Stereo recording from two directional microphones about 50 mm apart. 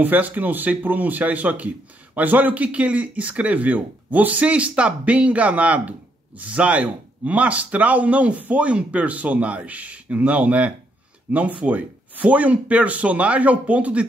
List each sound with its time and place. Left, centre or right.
0.0 s speech: right